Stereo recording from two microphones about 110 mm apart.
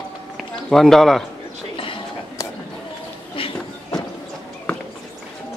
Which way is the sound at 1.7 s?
50° left (ahead or behind).